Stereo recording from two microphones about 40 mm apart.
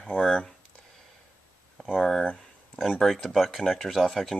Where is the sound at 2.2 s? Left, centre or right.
Left.